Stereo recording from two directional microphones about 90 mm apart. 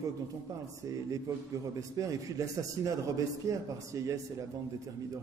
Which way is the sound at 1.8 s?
40° right (ahead or behind).